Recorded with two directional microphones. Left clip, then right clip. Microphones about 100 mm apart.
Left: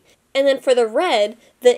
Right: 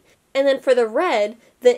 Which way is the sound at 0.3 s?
15° left (ahead or behind).